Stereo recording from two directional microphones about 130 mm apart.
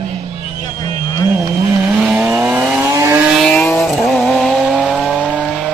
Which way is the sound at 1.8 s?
10° right (ahead or behind).